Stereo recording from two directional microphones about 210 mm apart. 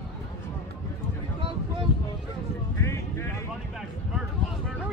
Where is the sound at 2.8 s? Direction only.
10° left (ahead or behind).